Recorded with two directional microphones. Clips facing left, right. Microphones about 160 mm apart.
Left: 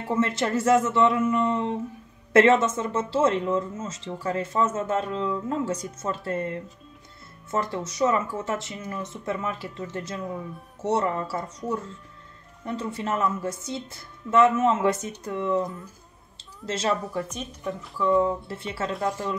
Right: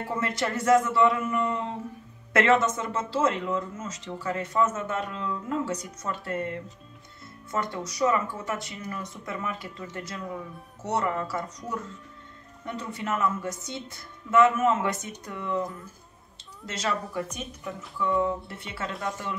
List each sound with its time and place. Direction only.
0.2 s speech: 25° left (ahead or behind)
16.6 s speech: 30° left (ahead or behind)